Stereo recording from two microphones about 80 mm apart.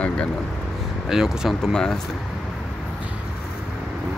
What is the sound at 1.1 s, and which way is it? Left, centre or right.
Speech, centre.